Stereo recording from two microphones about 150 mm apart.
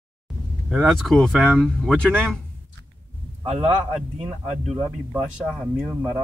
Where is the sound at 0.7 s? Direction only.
5° right (ahead or behind).